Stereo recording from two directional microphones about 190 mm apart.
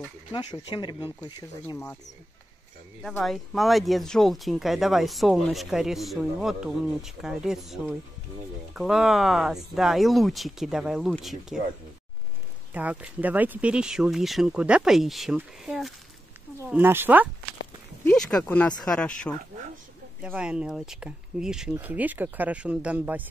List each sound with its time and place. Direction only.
0.3 s speech: 20° left (ahead or behind)
3.0 s speech: centre (ahead or behind)
12.7 s speech: 10° right (ahead or behind)
18.0 s speech: 5° left (ahead or behind)
20.2 s speech: 5° right (ahead or behind)